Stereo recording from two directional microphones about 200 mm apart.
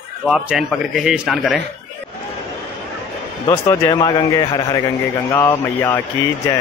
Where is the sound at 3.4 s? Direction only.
20° left (ahead or behind).